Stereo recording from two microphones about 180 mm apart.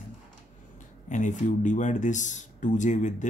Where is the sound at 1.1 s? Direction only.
45° left (ahead or behind).